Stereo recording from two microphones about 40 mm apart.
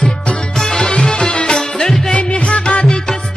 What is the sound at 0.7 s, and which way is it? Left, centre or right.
Music, left.